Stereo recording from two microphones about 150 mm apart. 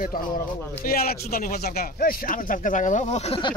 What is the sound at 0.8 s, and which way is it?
Speech, 85° left.